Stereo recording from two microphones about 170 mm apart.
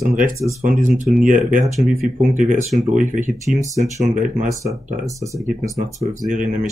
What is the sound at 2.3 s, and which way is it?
Speech, 45° right (ahead or behind).